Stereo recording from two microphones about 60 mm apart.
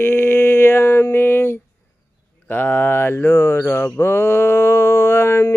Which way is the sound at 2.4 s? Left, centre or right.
Left.